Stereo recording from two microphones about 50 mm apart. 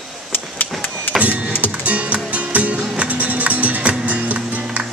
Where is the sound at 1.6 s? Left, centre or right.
Right.